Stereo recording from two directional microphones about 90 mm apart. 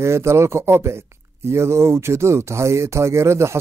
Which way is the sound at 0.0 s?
30° right (ahead or behind).